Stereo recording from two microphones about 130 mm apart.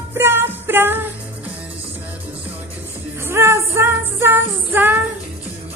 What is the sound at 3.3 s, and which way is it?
Female singing, 20° right (ahead or behind).